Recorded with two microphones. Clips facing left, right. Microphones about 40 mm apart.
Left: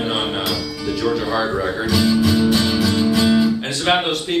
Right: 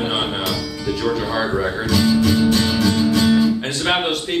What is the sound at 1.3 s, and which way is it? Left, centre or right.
Speech, centre.